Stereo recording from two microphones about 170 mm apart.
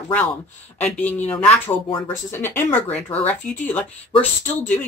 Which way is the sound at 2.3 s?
15° left (ahead or behind).